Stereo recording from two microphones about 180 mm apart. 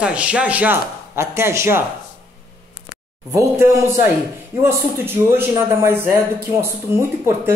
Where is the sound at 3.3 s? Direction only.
15° right (ahead or behind).